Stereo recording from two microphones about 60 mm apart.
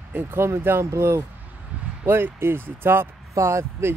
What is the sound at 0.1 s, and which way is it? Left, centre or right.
Speech, right.